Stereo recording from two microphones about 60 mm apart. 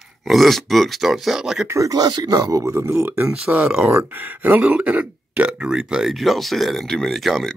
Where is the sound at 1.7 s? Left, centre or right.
Right.